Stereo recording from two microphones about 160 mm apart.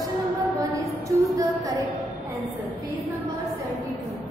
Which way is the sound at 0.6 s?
20° right (ahead or behind).